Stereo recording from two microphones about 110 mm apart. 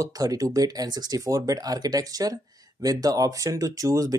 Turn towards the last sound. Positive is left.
turn(degrees=-30)  # may be behind; listen again after turning